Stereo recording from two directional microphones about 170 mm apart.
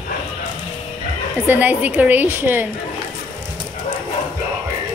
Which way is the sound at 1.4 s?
10° right (ahead or behind).